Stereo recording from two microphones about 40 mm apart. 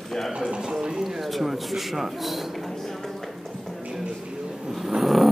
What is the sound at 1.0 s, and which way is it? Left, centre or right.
A man's voice, centre.